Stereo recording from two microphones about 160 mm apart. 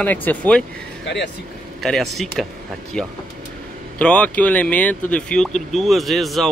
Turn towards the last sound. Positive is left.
turn(degrees=0)  # may be behind; listen again after turning